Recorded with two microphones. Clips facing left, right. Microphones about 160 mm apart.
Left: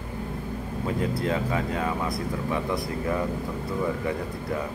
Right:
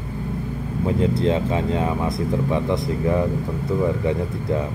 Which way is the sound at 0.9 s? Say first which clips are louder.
Right 7 dB; 25° right (ahead or behind).